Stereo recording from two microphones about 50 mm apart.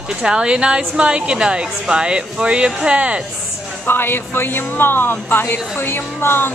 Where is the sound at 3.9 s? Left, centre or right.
Left.